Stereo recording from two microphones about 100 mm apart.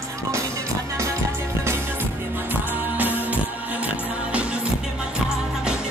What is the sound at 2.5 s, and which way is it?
Music, 20° right (ahead or behind).